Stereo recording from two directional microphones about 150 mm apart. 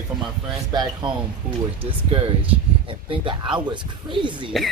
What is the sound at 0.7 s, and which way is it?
Speech, 30° right (ahead or behind).